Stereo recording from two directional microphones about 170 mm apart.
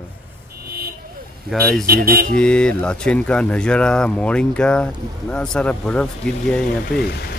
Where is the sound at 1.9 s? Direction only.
60° right (ahead or behind).